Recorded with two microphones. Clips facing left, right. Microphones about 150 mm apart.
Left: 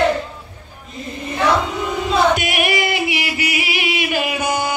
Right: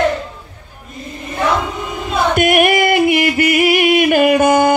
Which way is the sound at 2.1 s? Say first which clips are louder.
Right 5 dB; 50° right (ahead or behind).